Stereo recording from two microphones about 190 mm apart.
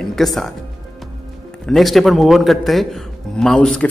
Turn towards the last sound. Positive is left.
turn(degrees=5)  # may be behind; listen again after turning